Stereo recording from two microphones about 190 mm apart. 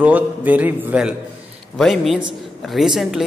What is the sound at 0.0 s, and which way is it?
A man's voice, 10° right (ahead or behind).